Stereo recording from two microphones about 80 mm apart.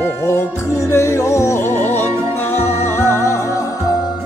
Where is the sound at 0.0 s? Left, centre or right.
Left.